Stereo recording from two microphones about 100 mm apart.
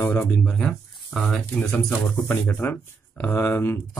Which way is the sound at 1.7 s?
20° left (ahead or behind).